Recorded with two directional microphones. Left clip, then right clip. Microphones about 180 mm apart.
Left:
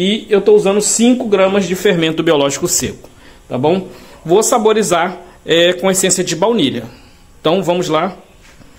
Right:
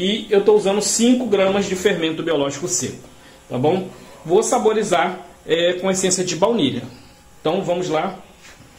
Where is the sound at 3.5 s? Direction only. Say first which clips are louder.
Left 4 dB; 70° left (ahead or behind); by 6.8 s 45° left (ahead or behind).